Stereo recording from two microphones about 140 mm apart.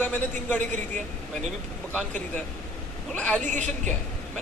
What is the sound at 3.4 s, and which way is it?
Speech, 60° right (ahead or behind).